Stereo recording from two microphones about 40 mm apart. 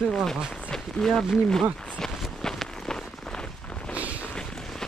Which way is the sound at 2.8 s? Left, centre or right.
Centre.